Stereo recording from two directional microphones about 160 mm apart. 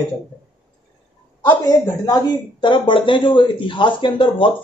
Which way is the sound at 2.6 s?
30° left (ahead or behind).